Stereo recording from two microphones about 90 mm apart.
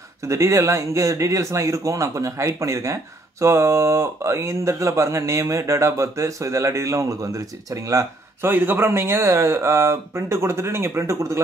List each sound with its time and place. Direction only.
0.2 s speech: 35° right (ahead or behind)